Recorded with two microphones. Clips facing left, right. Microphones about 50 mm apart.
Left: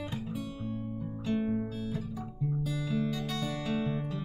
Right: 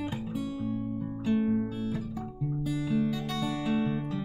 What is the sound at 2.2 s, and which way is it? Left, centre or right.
Music, centre.